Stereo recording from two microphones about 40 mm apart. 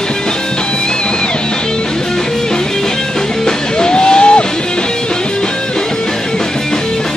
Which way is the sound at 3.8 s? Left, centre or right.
Left.